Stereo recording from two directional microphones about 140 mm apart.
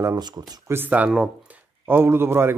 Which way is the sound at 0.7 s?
10° right (ahead or behind).